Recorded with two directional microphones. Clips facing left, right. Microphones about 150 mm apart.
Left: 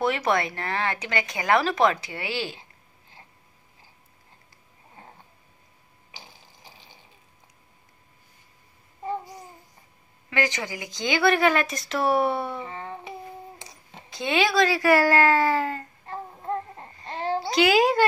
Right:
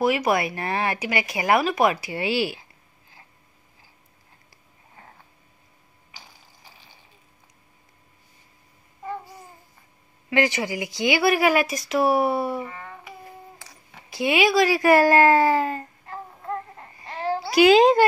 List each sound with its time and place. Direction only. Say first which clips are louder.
0.0 s speech: right 3 dB; 10° right (ahead or behind)
10.3 s speech: right 5 dB; 15° right (ahead or behind)
12.6 s a sound: left 3 dB; 30° left (ahead or behind)
14.1 s speech: right 3 dB; 10° right (ahead or behind)
16.1 s babbling: left 2 dB; 25° left (ahead or behind)
17.6 s speech: right 6 dB; 25° right (ahead or behind)